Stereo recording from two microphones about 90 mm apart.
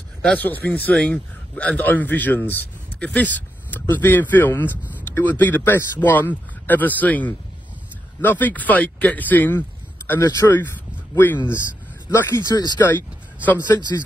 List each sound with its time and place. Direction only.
0.2 s speech: 15° left (ahead or behind)
12.4 s speech: 50° left (ahead or behind)
13.7 s speech: 35° left (ahead or behind)